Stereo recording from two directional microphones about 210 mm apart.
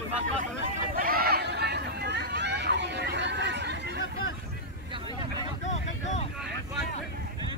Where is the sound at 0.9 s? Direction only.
45° right (ahead or behind).